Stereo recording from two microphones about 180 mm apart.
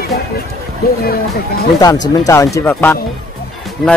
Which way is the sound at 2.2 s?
15° left (ahead or behind).